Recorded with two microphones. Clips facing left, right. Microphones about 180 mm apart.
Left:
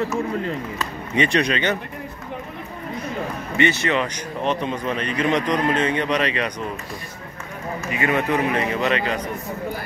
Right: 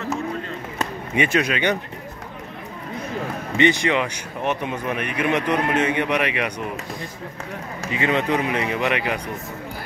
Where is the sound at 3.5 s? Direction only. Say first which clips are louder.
Right 2 dB; 15° right (ahead or behind).